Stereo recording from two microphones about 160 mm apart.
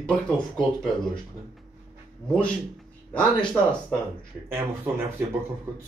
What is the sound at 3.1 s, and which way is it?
Speech, 5° left (ahead or behind).